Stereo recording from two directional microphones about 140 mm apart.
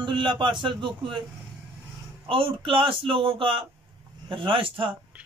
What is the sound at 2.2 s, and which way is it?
A man's voice, 40° right (ahead or behind).